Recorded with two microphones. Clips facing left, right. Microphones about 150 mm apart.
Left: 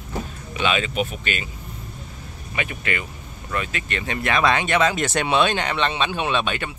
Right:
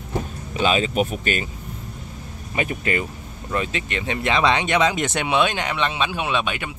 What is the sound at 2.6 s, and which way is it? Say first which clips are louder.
Speech: right 4 dB; 35° right (ahead or behind).